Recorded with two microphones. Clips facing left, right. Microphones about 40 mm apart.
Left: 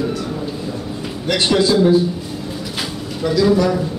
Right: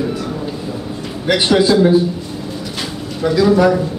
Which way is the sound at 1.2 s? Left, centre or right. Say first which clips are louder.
Right 3 dB; centre.